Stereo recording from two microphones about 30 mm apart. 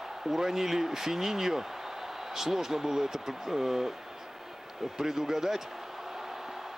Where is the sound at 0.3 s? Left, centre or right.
Centre.